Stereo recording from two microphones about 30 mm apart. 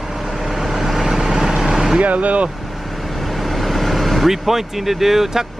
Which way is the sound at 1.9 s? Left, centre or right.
Right.